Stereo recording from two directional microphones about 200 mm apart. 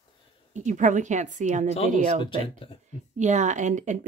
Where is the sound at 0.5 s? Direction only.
35° right (ahead or behind).